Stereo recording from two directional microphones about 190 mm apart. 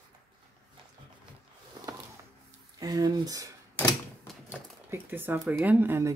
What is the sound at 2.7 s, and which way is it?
Speech, 20° right (ahead or behind).